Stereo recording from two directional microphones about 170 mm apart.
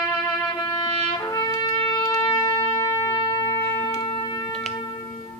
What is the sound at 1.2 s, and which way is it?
Shofar, 20° left (ahead or behind).